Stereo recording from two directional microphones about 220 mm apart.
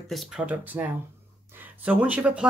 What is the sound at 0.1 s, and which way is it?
Speech, centre (ahead or behind).